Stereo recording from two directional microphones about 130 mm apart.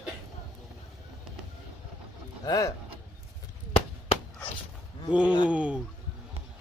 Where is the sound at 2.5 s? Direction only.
25° left (ahead or behind).